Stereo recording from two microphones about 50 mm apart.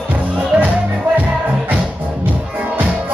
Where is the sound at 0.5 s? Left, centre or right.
Right.